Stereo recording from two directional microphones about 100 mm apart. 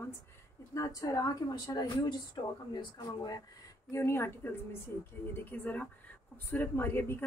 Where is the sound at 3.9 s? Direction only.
25° left (ahead or behind).